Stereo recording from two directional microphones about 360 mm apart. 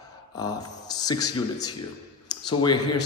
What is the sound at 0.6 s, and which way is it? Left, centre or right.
Speech, centre.